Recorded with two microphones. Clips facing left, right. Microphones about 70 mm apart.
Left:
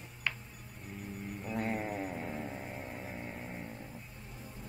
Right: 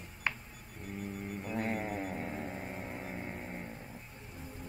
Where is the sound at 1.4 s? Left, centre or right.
Centre.